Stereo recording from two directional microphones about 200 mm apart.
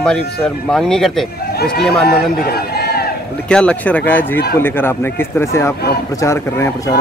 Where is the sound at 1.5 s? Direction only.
50° left (ahead or behind).